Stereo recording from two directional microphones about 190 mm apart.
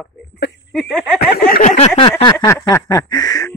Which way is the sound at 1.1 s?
55° left (ahead or behind).